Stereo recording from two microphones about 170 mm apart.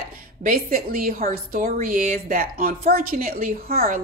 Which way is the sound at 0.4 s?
55° right (ahead or behind).